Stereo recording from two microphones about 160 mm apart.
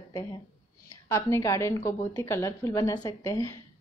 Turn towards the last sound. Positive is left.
turn(degrees=20)  # may be behind; listen again after turning